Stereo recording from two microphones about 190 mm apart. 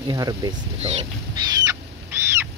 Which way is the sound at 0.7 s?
35° right (ahead or behind).